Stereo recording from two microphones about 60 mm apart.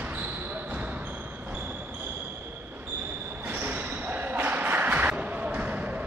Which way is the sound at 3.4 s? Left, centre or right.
Right.